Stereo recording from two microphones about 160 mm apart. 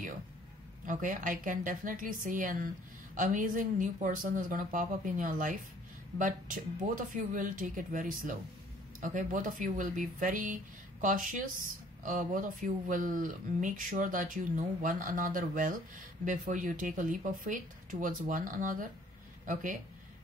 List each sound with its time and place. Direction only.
0.8 s speech: 55° right (ahead or behind)